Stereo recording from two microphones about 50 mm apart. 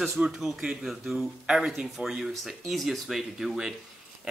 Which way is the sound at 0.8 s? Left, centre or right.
Centre.